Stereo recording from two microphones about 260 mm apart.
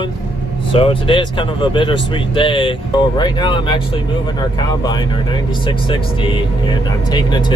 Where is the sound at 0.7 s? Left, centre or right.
Left.